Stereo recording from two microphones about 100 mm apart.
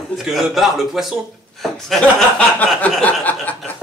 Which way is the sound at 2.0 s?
15° left (ahead or behind).